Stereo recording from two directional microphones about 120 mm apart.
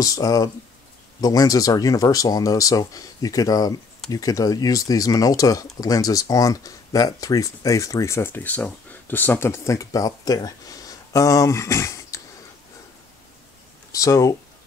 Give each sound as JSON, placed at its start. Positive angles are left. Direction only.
{"t": 0.0, "sound": "speech", "side_deg": 30}
{"t": 13.9, "sound": "speech", "side_deg": 30}